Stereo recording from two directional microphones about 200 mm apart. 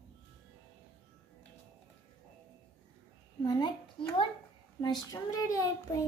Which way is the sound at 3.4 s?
20° left (ahead or behind).